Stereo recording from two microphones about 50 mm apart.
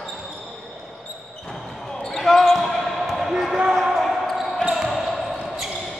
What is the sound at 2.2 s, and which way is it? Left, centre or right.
Basketball bounce, centre.